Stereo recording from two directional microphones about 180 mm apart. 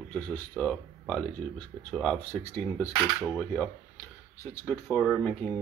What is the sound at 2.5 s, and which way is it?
Speech, 15° left (ahead or behind).